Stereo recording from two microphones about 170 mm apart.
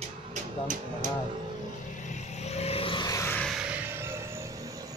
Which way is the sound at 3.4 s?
5° right (ahead or behind).